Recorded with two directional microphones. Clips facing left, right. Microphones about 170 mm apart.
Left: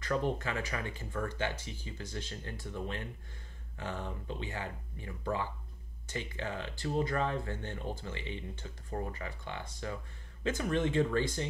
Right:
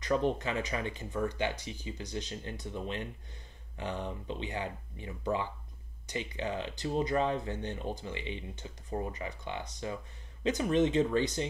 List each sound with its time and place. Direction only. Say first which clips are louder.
0.0 s speech: right 3 dB; 20° right (ahead or behind)